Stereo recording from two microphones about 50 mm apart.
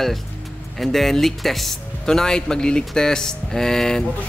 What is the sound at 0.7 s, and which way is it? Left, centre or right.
Speech, centre.